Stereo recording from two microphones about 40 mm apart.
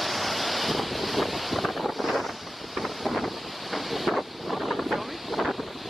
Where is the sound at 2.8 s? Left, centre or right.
Centre.